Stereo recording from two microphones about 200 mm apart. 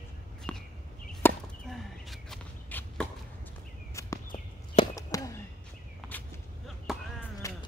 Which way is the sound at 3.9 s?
15° left (ahead or behind).